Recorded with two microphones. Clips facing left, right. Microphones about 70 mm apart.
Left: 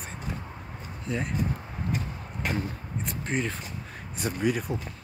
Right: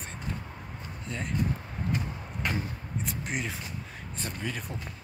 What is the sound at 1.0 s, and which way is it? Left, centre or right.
Speech, centre.